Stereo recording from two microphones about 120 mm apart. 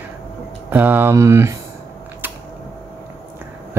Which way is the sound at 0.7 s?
15° right (ahead or behind).